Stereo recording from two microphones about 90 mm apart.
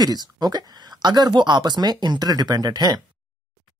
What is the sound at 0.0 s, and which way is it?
Speech, 45° right (ahead or behind).